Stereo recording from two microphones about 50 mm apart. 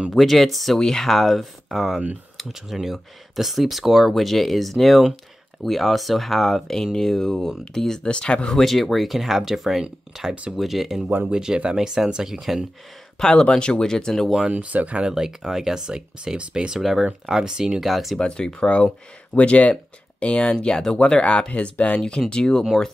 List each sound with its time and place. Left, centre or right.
0.1 s speech: centre
8.0 s speech: centre
8.5 s speech: centre
13.2 s speech: centre
14.5 s speech: right
15.1 s speech: centre
16.8 s speech: centre
17.8 s speech: centre
18.2 s speech: centre